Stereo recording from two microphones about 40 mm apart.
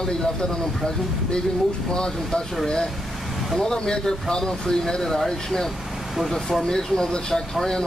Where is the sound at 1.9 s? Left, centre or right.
Centre.